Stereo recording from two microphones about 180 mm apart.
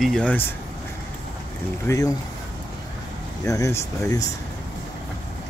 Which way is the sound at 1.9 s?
15° left (ahead or behind).